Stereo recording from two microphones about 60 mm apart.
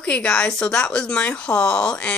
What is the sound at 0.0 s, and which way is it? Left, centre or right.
A woman's voice, centre.